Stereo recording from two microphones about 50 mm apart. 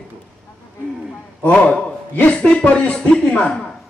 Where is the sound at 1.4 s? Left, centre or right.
Left.